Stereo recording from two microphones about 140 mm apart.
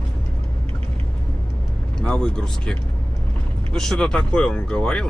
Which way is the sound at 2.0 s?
5° left (ahead or behind).